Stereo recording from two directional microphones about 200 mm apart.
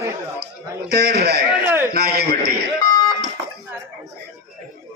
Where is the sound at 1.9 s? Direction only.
50° right (ahead or behind).